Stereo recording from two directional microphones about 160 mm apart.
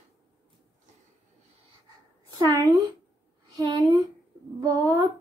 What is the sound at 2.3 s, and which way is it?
Speech, 25° right (ahead or behind).